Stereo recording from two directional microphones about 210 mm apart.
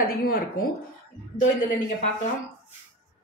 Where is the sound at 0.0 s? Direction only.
45° left (ahead or behind).